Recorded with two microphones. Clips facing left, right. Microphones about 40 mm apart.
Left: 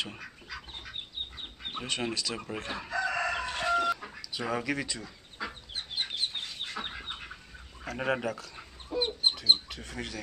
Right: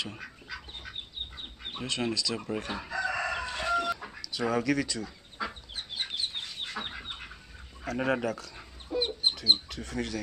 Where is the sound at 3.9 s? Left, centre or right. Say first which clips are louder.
Left 2 dB; centre.